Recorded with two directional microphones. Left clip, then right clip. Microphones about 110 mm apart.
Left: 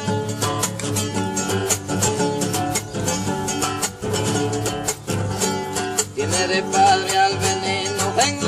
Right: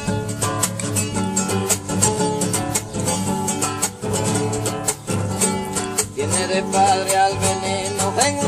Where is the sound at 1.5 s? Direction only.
5° left (ahead or behind).